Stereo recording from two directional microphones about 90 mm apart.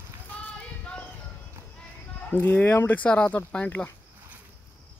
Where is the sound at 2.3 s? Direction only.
20° left (ahead or behind).